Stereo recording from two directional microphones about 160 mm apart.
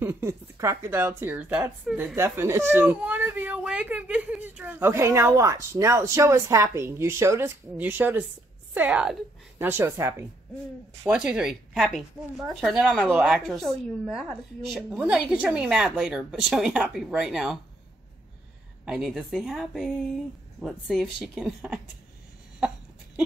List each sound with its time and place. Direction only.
0.0 s speech: 15° right (ahead or behind)
11.1 s speech: 5° right (ahead or behind)
18.9 s speech: centre (ahead or behind)